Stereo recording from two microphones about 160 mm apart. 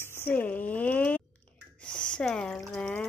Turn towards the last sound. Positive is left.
turn(degrees=5)  # may be behind; listen again after turning